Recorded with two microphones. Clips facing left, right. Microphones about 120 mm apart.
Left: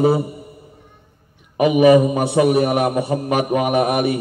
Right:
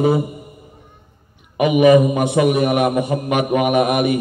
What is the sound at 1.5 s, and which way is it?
A man's voice, 35° left (ahead or behind).